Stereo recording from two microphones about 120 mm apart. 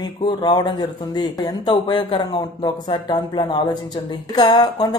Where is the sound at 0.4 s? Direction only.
40° left (ahead or behind).